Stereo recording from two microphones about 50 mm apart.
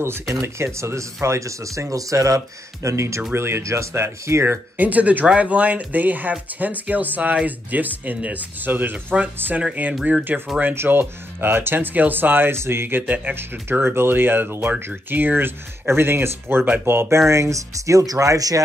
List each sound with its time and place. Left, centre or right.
0.3 s speech: right
3.3 s speech: right
3.6 s speech: right
4.7 s speech: right
10.7 s speech: right
12.5 s speech: right
13.0 s speech: right
17.3 s speech: right